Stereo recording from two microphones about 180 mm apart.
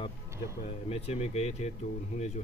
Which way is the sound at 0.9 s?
35° left (ahead or behind).